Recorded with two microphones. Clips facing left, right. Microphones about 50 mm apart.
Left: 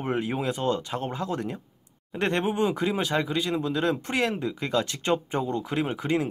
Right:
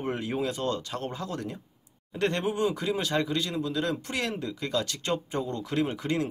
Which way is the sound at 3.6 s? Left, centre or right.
Left.